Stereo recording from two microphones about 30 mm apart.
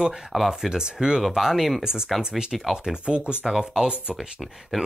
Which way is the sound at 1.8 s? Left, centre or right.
Right.